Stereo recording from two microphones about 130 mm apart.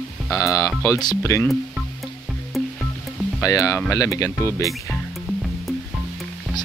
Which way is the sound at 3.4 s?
25° left (ahead or behind).